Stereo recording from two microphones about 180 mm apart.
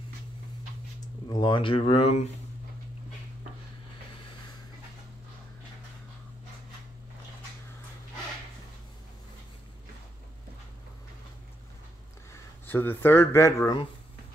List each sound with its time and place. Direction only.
1.3 s speech: 25° left (ahead or behind)
12.3 s speech: 10° left (ahead or behind)